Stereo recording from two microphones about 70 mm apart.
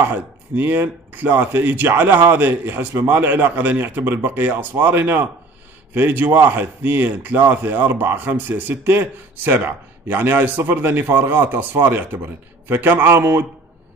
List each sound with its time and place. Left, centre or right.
0.0 s speech: right